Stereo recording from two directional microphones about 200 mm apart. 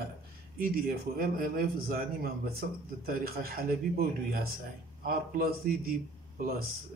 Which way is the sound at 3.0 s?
45° right (ahead or behind).